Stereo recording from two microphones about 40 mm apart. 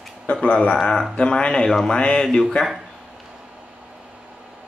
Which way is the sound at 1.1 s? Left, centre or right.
Left.